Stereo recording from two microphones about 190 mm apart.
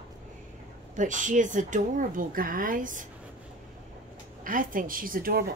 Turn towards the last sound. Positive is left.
turn(degrees=-50)  # may be behind; listen again after turning